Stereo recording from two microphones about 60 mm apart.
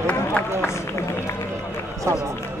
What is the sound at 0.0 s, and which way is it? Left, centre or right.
Run, left.